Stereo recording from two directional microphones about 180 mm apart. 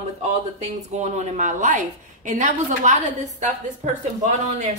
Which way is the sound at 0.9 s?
40° right (ahead or behind).